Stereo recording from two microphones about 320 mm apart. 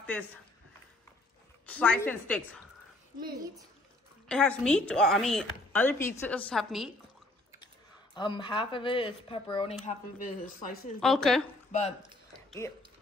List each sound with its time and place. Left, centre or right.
1.7 s speech: centre
3.2 s a child's voice: centre
4.3 s speech: centre
7.6 s speech: centre
11.0 s speech: centre
11.7 s speech: left
12.4 s a sound: centre